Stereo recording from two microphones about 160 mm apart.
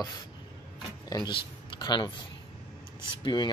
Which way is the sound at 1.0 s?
25° left (ahead or behind).